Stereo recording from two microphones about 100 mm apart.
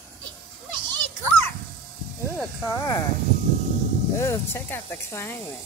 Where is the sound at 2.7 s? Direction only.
35° left (ahead or behind).